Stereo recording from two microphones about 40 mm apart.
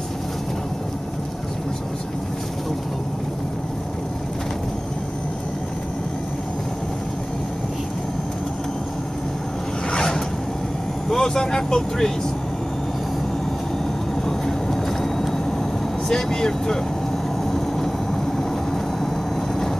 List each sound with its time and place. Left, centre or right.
9.8 s a sound: centre
11.1 s speech: centre
14.2 s vehicle: centre
16.1 s speech: centre
17.5 s vehicle: centre